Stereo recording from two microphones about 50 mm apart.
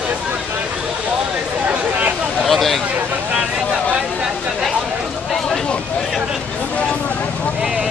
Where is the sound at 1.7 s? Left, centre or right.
Right.